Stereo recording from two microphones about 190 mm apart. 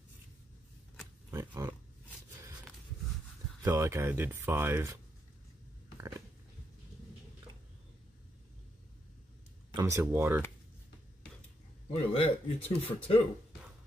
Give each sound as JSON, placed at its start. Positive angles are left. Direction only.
{"t": 1.3, "sound": "roaring cats", "side_deg": -15}
{"t": 3.6, "sound": "speech", "side_deg": -15}
{"t": 9.8, "sound": "speech", "side_deg": -15}
{"t": 11.9, "sound": "speech", "side_deg": 30}